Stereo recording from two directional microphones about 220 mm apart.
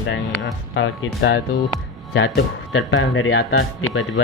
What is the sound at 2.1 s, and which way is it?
Speech, 60° left (ahead or behind).